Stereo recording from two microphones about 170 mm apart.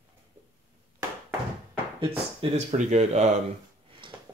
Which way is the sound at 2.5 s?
40° right (ahead or behind).